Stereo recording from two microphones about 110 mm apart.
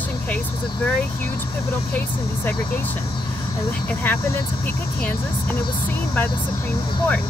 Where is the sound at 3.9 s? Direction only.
20° left (ahead or behind).